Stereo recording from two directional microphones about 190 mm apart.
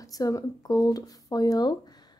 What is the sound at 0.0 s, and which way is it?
Speech, 20° left (ahead or behind).